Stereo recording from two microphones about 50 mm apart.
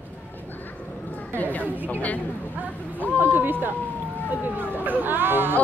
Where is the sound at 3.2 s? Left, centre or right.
Right.